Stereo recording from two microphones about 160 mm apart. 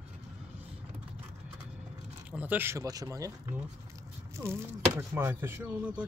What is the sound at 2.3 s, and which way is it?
Speech, 10° right (ahead or behind).